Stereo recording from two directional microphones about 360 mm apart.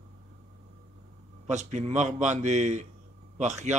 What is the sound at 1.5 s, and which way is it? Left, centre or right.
A man's voice, centre.